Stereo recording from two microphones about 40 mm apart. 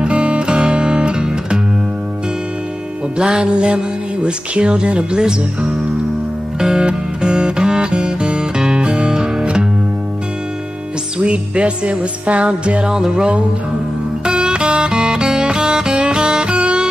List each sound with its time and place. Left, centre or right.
0.0 s music: right
3.2 s music: centre
3.5 s speech: right
6.6 s music: centre
11.1 s speech: right
12.8 s music: centre
14.2 s music: right
16.4 s music: right